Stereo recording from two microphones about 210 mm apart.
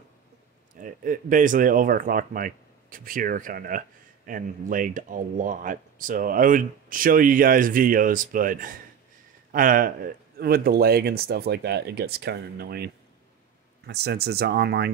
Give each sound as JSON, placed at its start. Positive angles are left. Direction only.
{"t": 0.7, "sound": "speech", "side_deg": -40}